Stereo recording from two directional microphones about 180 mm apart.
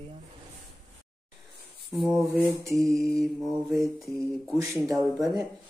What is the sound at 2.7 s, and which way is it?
Mantra, centre (ahead or behind).